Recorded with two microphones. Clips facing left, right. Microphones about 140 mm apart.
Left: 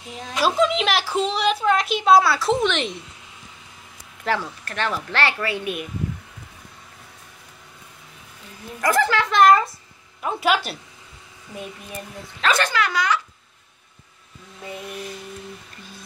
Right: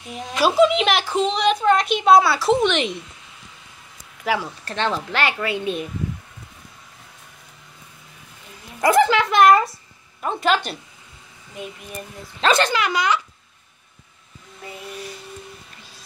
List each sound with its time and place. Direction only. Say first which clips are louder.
0.4 s a woman's voice: right 4 dB; 5° right (ahead or behind)
4.2 s speech: right 1 dB; 5° right (ahead or behind)
4.6 s speech: right 3 dB; 25° right (ahead or behind)
8.8 s speech: right 4 dB; 20° right (ahead or behind)
10.2 s a woman's voice: right 1 dB; 5° left (ahead or behind)
12.4 s speech: right 3 dB; 25° right (ahead or behind)